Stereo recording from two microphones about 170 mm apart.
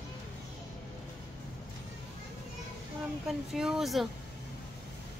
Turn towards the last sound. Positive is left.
turn(degrees=0)  # may be behind; listen again after turning